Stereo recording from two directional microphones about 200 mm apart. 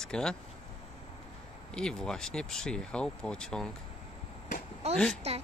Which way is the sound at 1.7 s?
5° left (ahead or behind).